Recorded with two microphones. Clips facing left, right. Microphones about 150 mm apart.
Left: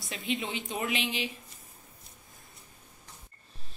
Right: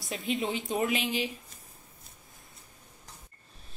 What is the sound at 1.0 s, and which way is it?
Speech, 45° right (ahead or behind).